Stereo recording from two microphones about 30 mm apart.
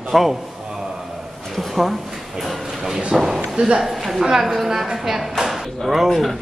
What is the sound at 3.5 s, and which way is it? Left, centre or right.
Speech, right.